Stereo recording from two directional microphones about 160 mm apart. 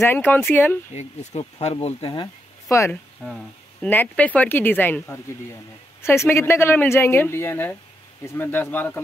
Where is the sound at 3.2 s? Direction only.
5° left (ahead or behind).